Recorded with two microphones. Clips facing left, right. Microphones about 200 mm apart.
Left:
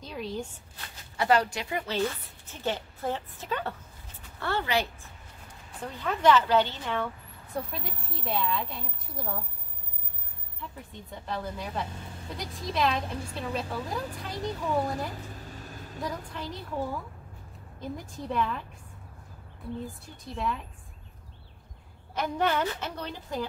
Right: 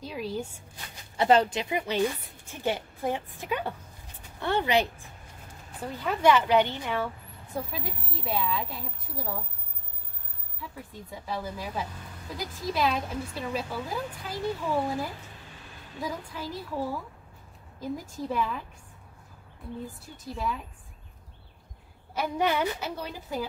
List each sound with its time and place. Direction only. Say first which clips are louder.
0.0 s speech: right 2 dB; 5° right (ahead or behind)
1.1 s a woman's voice: right 3 dB; 25° right (ahead or behind)
7.5 s speech: right 1 dB; centre (ahead or behind)
10.6 s speech: right 1 dB; 5° right (ahead or behind)
15.3 s vehicle: left 6 dB; 40° left (ahead or behind)
16.0 s speech: right 1 dB; centre (ahead or behind)
19.9 s speech: right 2 dB; centre (ahead or behind)
22.1 s a woman's voice: right 1 dB; 10° right (ahead or behind)